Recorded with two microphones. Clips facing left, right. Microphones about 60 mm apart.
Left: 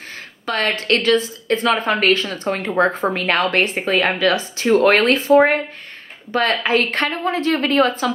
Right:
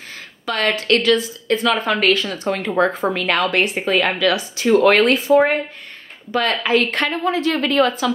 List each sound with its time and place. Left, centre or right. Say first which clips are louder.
0.5 s a woman's voice: right 1 dB; left